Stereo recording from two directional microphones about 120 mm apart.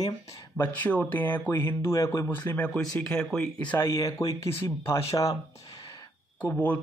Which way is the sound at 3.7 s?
20° left (ahead or behind).